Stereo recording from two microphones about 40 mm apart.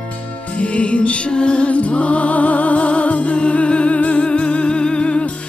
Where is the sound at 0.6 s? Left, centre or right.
Left.